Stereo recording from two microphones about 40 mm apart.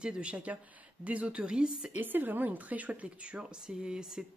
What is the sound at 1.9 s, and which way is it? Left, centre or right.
Speech, right.